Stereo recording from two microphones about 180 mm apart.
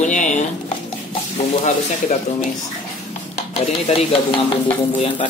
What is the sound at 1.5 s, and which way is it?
Speech, 40° left (ahead or behind).